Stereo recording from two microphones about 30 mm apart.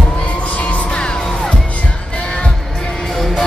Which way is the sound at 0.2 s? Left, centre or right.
Left.